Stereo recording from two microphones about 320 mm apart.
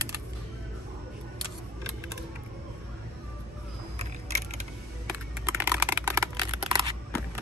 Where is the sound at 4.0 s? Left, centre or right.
Centre.